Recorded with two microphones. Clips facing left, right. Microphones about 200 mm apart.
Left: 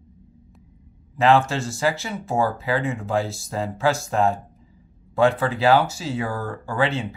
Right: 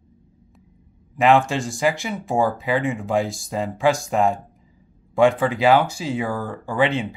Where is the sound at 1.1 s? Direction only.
15° right (ahead or behind).